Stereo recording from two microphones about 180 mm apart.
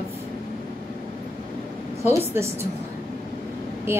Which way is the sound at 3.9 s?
15° right (ahead or behind).